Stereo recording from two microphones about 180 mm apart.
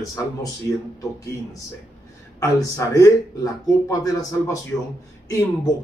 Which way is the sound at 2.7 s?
20° left (ahead or behind).